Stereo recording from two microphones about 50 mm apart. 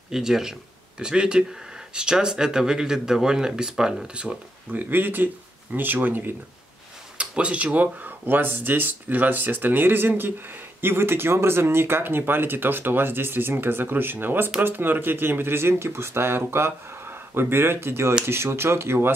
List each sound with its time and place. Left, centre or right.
0.1 s speech: centre
4.1 s speech: right
4.7 s speech: right
7.2 s speech: right